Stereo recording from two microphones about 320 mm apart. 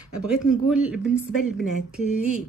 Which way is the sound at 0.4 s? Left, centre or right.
Centre.